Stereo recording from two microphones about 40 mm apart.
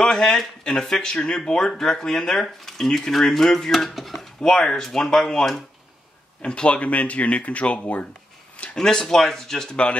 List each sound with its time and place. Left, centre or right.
0.0 s speech: centre
4.4 s speech: centre
6.4 s speech: left
8.7 s speech: centre
9.7 s speech: left